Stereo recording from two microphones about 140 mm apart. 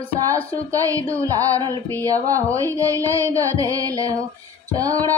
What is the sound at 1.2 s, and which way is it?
Music, 25° right (ahead or behind).